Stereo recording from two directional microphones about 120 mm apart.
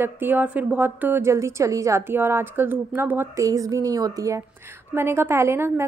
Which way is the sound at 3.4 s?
30° right (ahead or behind).